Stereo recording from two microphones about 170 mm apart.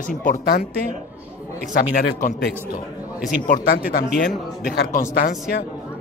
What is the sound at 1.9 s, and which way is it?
A man's voice, 55° left (ahead or behind).